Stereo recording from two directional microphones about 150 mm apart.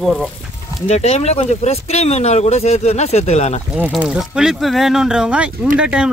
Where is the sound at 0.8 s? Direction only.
45° left (ahead or behind).